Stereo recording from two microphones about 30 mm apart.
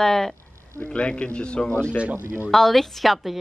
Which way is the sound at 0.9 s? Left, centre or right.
Left.